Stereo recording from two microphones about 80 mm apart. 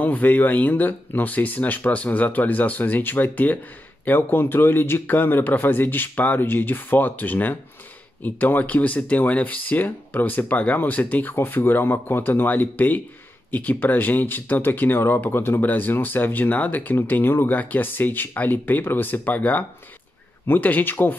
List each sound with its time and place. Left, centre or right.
0.0 s speech: left